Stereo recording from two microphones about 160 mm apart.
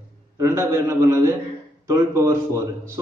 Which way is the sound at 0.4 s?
20° right (ahead or behind).